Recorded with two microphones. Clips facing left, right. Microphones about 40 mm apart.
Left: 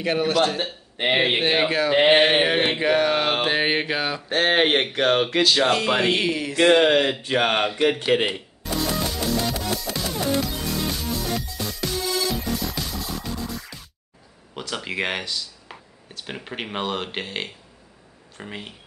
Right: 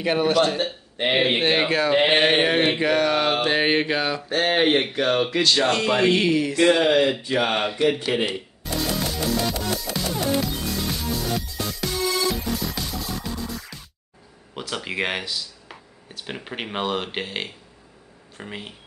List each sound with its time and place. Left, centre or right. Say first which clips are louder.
0.0 s speech: right 1 dB; centre
4.3 s speech: left 1 dB; left
5.4 s speech: left 1 dB; centre
6.7 s speech: left 3 dB; left
8.6 s music: left 1 dB; centre
14.5 s speech: even; centre